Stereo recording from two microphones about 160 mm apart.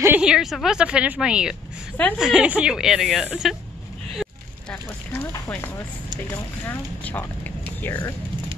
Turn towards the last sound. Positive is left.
turn(degrees=15)  # may be behind; listen again after turning